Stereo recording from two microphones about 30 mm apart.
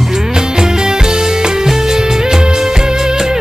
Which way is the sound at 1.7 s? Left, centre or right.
Centre.